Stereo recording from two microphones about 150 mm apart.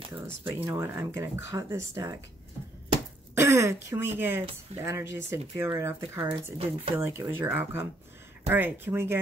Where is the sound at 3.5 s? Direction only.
15° right (ahead or behind).